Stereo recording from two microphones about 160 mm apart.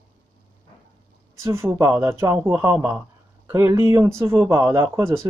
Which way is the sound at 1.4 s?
15° right (ahead or behind).